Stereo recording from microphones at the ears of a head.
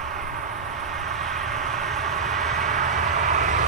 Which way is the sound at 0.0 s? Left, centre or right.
Right.